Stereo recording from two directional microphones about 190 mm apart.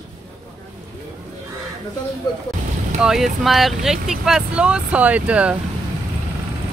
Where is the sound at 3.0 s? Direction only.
Centre (ahead or behind).